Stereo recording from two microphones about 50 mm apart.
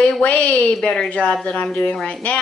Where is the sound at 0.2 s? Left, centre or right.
Left.